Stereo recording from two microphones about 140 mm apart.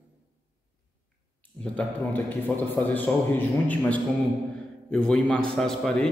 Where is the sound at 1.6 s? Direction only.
10° left (ahead or behind).